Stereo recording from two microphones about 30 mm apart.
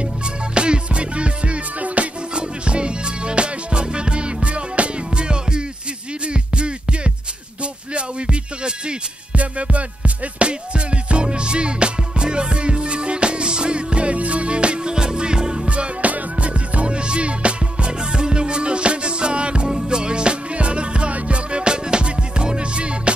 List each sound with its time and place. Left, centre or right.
0.6 s music: right
2.3 s music: right
9.3 s music: right
16.0 s music: right